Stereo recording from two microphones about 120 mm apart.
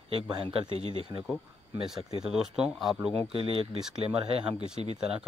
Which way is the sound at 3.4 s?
50° right (ahead or behind).